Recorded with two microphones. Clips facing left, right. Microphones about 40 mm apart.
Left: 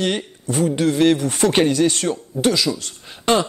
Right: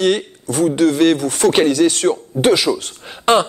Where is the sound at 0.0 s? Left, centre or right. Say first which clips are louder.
Right 6 dB; centre.